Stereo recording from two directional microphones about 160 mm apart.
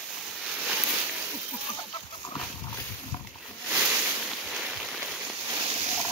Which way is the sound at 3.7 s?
10° right (ahead or behind).